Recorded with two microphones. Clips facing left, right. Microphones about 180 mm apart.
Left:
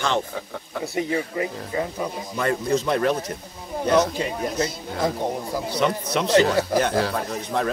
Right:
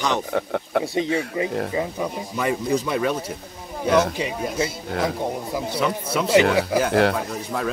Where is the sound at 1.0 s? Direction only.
20° right (ahead or behind); by 3.4 s 5° right (ahead or behind).